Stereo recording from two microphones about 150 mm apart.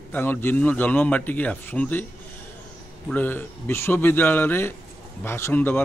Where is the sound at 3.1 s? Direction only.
15° left (ahead or behind).